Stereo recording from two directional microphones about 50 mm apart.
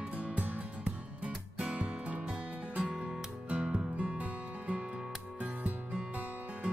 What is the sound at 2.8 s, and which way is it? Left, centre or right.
Music, centre.